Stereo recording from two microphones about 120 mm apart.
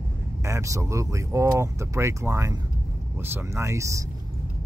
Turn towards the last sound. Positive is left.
turn(degrees=-25)  # may be behind; listen again after turning